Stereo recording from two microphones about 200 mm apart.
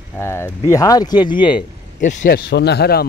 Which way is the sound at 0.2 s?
10° left (ahead or behind).